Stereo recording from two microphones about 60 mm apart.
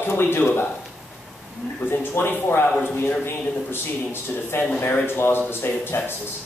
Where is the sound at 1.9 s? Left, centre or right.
Left.